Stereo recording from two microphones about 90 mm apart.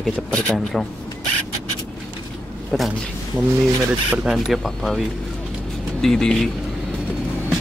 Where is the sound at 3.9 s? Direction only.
15° right (ahead or behind).